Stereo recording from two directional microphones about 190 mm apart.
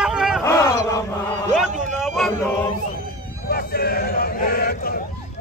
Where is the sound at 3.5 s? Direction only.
55° left (ahead or behind).